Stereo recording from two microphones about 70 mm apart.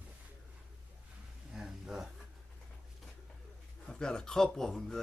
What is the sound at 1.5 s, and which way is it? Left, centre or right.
Speech, centre.